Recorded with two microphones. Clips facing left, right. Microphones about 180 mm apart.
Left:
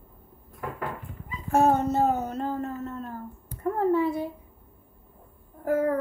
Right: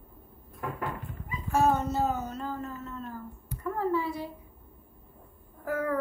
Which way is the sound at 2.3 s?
55° left (ahead or behind).